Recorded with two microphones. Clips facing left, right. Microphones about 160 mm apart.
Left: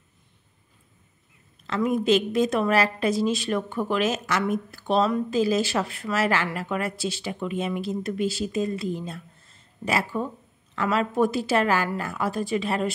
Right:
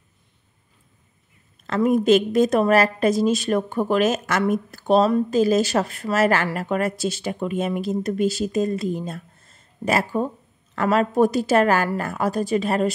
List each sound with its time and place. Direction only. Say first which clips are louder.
1.7 s a woman's voice: right 5 dB; 45° right (ahead or behind)